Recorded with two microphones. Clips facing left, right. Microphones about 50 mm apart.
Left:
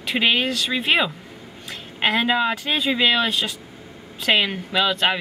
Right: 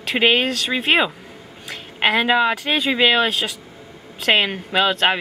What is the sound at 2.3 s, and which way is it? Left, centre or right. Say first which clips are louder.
Speech: right 3 dB; right.